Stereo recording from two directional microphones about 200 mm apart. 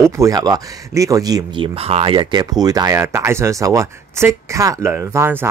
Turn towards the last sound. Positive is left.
turn(degrees=-10)  # may be behind; listen again after turning